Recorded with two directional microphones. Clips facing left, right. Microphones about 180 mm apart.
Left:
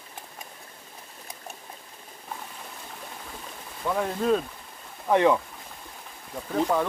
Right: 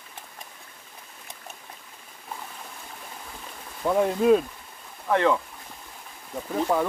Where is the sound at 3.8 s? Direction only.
15° right (ahead or behind).